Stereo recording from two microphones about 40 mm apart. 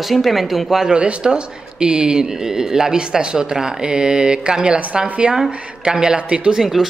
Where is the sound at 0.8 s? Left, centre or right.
Right.